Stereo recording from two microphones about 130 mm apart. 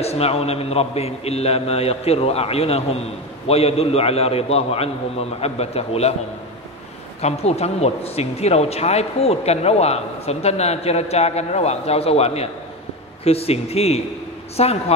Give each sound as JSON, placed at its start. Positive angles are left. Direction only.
{"t": 0.0, "sound": "speech", "side_deg": 50}
{"t": 7.2, "sound": "speech", "side_deg": 55}